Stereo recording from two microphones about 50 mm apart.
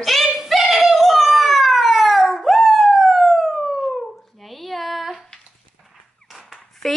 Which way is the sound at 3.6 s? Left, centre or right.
Centre.